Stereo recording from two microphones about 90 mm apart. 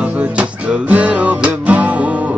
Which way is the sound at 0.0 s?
15° right (ahead or behind).